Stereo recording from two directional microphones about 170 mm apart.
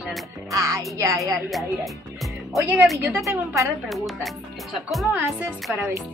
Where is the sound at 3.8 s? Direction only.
Centre (ahead or behind).